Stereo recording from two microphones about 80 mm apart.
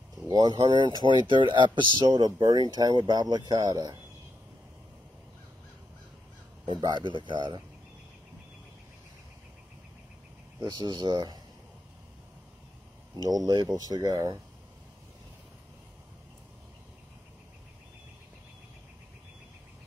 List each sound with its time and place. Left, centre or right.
0.3 s speech: right
2.0 s speech: right
6.8 s speech: right
10.6 s speech: right
13.1 s speech: right